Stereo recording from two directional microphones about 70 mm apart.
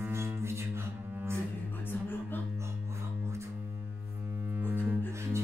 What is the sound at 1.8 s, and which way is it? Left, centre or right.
Music, left.